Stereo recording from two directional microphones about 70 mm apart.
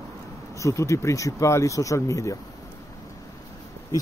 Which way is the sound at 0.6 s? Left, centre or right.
Left.